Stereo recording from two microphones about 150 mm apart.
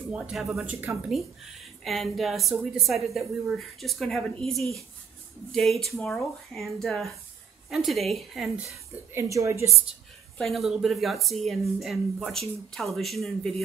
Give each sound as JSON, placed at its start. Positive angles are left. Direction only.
{"t": 0.1, "sound": "speech", "side_deg": -5}
{"t": 0.7, "sound": "speech", "side_deg": -15}
{"t": 1.9, "sound": "speech", "side_deg": 0}
{"t": 9.1, "sound": "a woman's voice", "side_deg": -20}
{"t": 10.3, "sound": "speech", "side_deg": 0}